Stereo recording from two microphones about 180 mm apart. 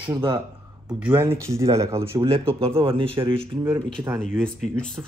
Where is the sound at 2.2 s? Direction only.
30° right (ahead or behind).